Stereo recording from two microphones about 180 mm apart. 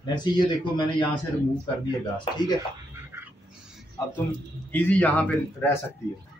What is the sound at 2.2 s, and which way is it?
Speech, 25° left (ahead or behind).